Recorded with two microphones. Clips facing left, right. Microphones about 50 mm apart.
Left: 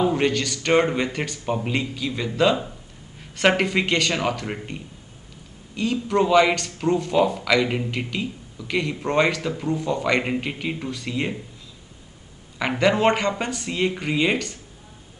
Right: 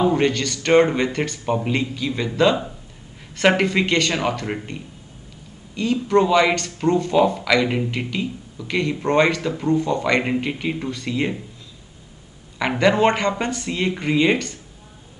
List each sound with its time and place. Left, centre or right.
0.0 s speech: centre
4.1 s speech: centre
5.8 s speech: centre
12.5 s speech: centre